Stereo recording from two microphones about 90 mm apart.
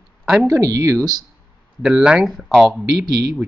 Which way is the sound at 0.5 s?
40° right (ahead or behind).